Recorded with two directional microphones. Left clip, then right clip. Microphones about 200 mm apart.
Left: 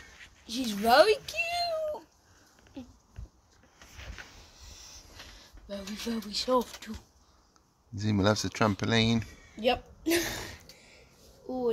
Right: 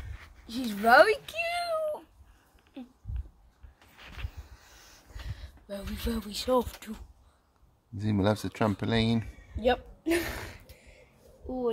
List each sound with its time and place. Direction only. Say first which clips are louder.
0.5 s speech: right 2 dB; 10° left (ahead or behind)
1.3 s a sound: even; centre (ahead or behind)
2.8 s dog: even; 5° right (ahead or behind)
5.7 s speech: right 1 dB; 20° right (ahead or behind)
7.9 s speech: left 1 dB; 5° right (ahead or behind)